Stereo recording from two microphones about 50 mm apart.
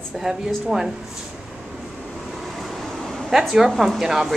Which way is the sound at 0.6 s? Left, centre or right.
Centre.